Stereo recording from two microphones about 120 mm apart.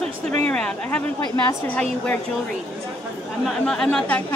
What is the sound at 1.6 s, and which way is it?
Speech, 15° left (ahead or behind).